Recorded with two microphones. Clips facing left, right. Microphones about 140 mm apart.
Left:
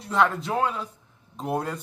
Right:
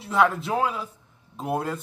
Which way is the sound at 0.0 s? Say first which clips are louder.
Right 1 dB; 5° right (ahead or behind).